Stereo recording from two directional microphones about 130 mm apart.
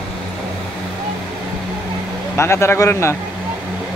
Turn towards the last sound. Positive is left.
turn(degrees=20)  # may be behind; listen again after turning